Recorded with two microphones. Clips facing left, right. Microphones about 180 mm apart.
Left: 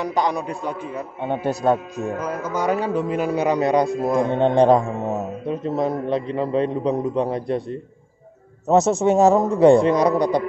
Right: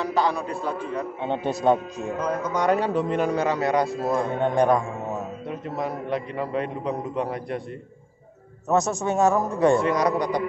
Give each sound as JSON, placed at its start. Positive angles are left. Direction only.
{"t": 0.0, "sound": "speech", "side_deg": 15}
{"t": 3.4, "sound": "speech", "side_deg": 20}
{"t": 4.3, "sound": "a man's voice", "side_deg": 25}
{"t": 8.6, "sound": "a man's voice", "side_deg": 25}